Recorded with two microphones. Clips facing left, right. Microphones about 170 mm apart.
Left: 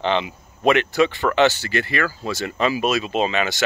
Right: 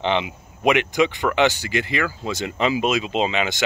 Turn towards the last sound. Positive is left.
turn(degrees=-15)  # may be behind; listen again after turning